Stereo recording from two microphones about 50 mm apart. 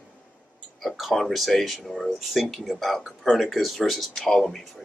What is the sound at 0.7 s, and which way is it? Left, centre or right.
Speech, centre.